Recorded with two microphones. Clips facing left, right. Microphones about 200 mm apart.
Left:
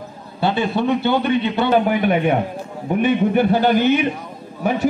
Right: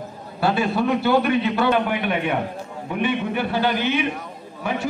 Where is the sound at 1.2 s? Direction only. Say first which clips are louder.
Left 1 dB; 30° left (ahead or behind).